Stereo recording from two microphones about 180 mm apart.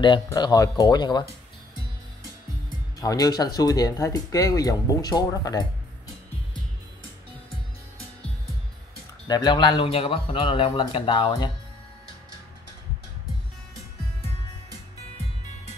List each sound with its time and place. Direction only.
0.0 s a man's voice: 25° left (ahead or behind)
3.0 s a man's voice: 20° left (ahead or behind)
9.3 s a man's voice: 25° left (ahead or behind)